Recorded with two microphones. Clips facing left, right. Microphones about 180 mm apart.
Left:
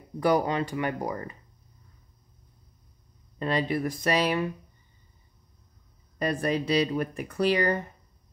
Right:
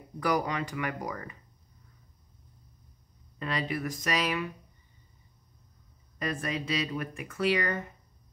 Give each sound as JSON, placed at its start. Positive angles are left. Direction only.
{"t": 0.2, "sound": "speech", "side_deg": 30}
{"t": 3.3, "sound": "speech", "side_deg": 30}
{"t": 6.1, "sound": "speech", "side_deg": 35}